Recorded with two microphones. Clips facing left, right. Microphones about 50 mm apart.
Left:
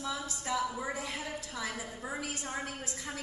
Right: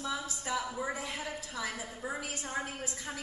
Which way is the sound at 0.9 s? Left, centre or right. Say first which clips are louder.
Even; right.